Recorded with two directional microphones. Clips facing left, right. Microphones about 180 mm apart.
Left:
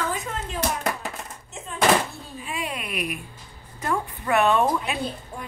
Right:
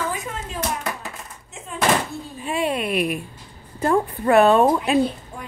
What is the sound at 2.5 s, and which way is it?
A woman's voice, 30° right (ahead or behind).